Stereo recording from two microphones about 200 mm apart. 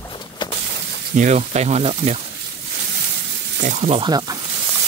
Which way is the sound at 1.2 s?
35° right (ahead or behind).